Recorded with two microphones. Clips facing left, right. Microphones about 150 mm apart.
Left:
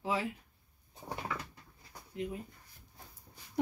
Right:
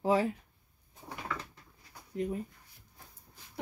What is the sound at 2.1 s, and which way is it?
Speech, 40° right (ahead or behind).